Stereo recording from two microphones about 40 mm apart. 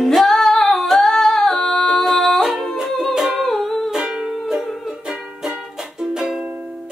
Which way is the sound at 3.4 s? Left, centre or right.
Centre.